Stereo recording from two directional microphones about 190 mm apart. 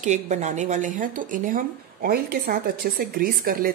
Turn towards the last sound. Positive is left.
turn(degrees=-50)  # may be behind; listen again after turning